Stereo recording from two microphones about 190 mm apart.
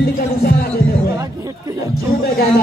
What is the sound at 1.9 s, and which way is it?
Speech, 50° left (ahead or behind).